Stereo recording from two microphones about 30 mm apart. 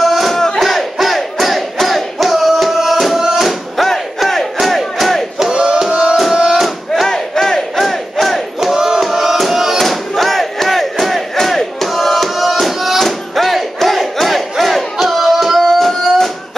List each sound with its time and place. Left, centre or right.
0.0 s battle cry: centre
3.2 s music: centre
3.4 s battle cry: centre
5.4 s battle cry: right
6.1 s music: centre
7.3 s battle cry: centre
8.5 s music: centre
9.4 s battle cry: centre
11.3 s music: centre
13.0 s battle cry: centre